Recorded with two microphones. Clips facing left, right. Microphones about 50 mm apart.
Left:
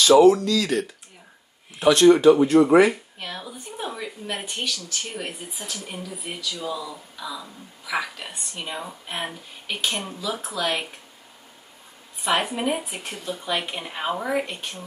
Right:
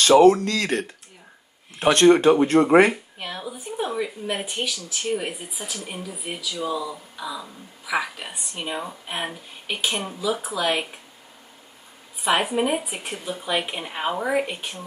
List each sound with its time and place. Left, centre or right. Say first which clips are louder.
0.2 s speech: even; right
2.9 s speech: right 1 dB; centre
12.2 s speech: right 2 dB; centre